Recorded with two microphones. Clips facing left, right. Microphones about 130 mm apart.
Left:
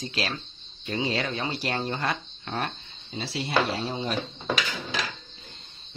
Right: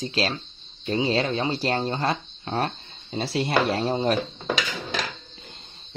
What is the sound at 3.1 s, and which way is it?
Speech, 50° right (ahead or behind).